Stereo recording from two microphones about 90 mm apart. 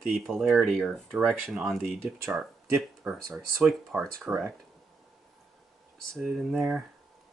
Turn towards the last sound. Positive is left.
turn(degrees=-10)  # may be behind; listen again after turning